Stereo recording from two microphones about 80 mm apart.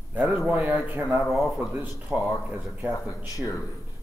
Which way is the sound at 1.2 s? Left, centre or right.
Centre.